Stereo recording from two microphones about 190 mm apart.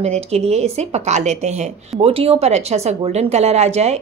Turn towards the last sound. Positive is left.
turn(degrees=-35)  # may be behind; listen again after turning